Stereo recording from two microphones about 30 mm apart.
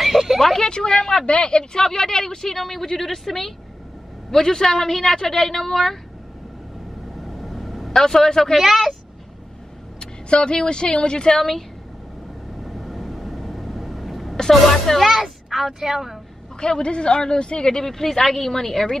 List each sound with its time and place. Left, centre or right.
0.0 s a sound: centre
0.6 s speech: left
1.6 s a woman's voice: centre
7.2 s vehicle: centre
7.9 s a woman's voice: centre
9.9 s speech: left
12.6 s vehicle: centre
14.5 s a woman's voice: centre
15.1 s a woman's voice: centre
16.5 s speech: left
17.8 s a woman's voice: centre